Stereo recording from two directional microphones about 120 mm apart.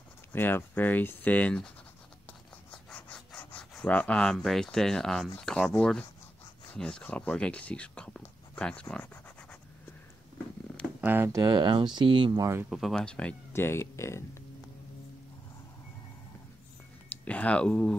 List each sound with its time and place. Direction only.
0.3 s speech: 15° left (ahead or behind)
2.7 s a sound: 10° left (ahead or behind)
5.4 s speech: 5° left (ahead or behind)
11.0 s speech: 15° right (ahead or behind)
11.3 s speech: 35° right (ahead or behind)
12.6 s speech: centre (ahead or behind)
13.5 s speech: 20° left (ahead or behind)
17.2 s speech: 10° left (ahead or behind)